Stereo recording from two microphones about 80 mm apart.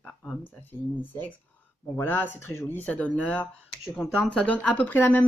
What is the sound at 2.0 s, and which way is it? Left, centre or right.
Speech, left.